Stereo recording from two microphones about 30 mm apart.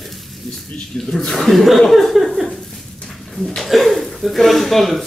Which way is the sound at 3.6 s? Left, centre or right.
Centre.